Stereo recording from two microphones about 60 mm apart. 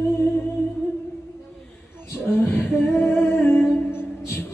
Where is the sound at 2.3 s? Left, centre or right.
Left.